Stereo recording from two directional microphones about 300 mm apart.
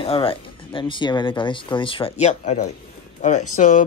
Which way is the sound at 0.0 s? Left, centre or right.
Centre.